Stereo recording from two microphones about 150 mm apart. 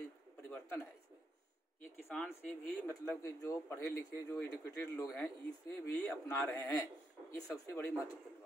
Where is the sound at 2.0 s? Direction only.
10° left (ahead or behind).